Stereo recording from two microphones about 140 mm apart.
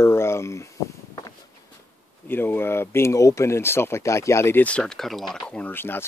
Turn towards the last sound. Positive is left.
turn(degrees=15)  # may be behind; listen again after turning